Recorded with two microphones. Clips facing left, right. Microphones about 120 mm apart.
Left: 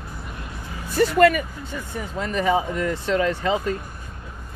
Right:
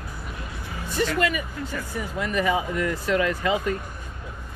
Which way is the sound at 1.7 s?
25° left (ahead or behind).